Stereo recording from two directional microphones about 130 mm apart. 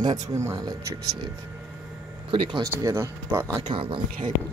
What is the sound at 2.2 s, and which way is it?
Speech, 40° right (ahead or behind).